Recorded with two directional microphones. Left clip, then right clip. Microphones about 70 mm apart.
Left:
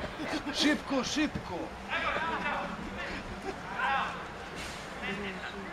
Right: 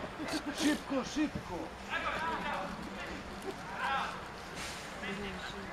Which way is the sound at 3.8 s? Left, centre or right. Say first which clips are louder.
Left 4 dB; centre.